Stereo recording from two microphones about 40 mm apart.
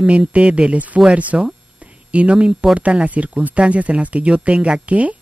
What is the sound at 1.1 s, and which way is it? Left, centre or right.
Speech, right.